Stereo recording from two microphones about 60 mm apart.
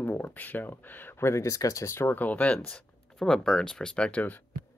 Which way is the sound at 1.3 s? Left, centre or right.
Left.